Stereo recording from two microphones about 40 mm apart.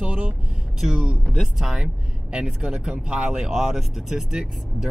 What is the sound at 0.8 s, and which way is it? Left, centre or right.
Speech, centre.